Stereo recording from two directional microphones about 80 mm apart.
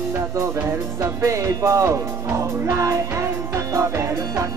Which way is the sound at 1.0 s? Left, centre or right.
Right.